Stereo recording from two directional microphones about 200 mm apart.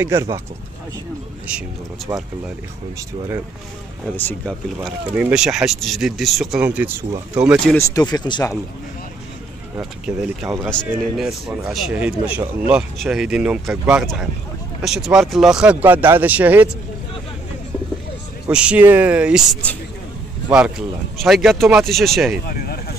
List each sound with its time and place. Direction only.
0.0 s speech: 15° right (ahead or behind)
1.5 s speech: 5° right (ahead or behind)
4.2 s speech: 5° left (ahead or behind)
7.7 s speech: 20° left (ahead or behind)
9.8 s speech: 5° right (ahead or behind)
18.5 s speech: 5° right (ahead or behind)
22.5 s speech: 50° left (ahead or behind)